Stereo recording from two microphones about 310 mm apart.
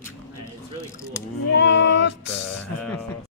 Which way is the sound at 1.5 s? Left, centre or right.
Left.